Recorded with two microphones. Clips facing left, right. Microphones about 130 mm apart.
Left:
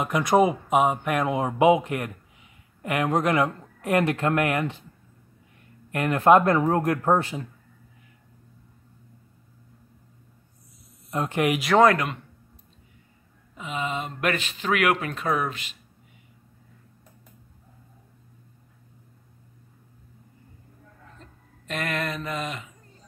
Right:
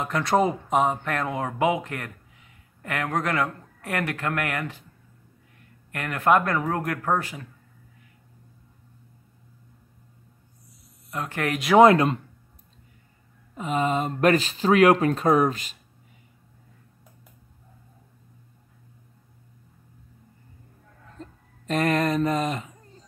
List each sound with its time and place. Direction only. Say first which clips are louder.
0.0 s speech: left 2 dB; 15° left (ahead or behind)
5.9 s speech: left 4 dB; 20° left (ahead or behind)
11.1 s speech: left 4 dB; 20° left (ahead or behind)
11.8 s speech: right 5 dB; 30° right (ahead or behind)
13.6 s speech: right 6 dB; 45° right (ahead or behind)
21.2 s a sound: right 12 dB; 35° right (ahead or behind)
21.6 s speech: right 7 dB; 35° right (ahead or behind)